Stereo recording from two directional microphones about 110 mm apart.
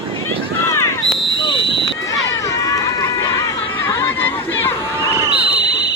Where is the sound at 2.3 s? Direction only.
30° left (ahead or behind).